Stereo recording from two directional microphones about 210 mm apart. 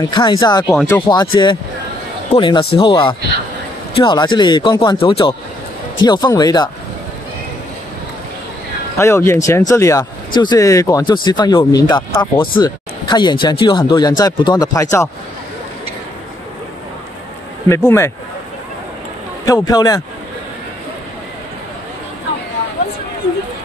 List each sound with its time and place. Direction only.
0.0 s speech: 20° left (ahead or behind)
8.9 s speech: 15° left (ahead or behind)
17.6 s speech: 10° left (ahead or behind)
19.4 s speech: 15° left (ahead or behind)